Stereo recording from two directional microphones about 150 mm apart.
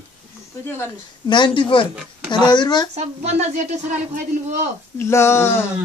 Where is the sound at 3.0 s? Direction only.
50° right (ahead or behind).